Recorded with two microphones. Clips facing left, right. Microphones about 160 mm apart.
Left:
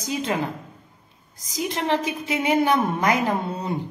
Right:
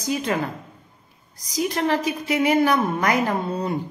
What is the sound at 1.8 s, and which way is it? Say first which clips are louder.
A woman's voice: right 2 dB; 25° left (ahead or behind).